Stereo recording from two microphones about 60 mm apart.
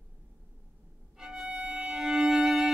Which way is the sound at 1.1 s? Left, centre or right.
Centre.